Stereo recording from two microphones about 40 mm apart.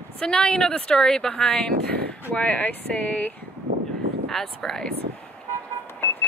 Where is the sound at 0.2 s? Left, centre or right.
Left.